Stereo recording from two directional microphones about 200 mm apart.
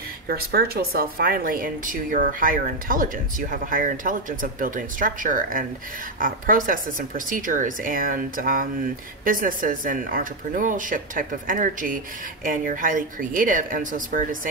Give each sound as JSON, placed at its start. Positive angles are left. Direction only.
{"t": 0.3, "sound": "speech", "side_deg": -50}